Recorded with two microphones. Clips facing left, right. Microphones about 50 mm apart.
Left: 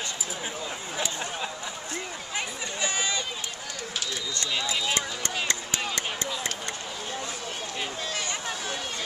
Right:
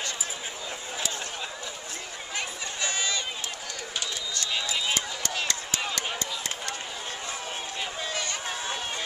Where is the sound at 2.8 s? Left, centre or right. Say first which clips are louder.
Left 1 dB; centre.